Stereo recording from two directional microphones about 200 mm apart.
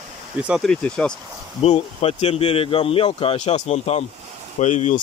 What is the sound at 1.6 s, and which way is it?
Speech, 30° left (ahead or behind).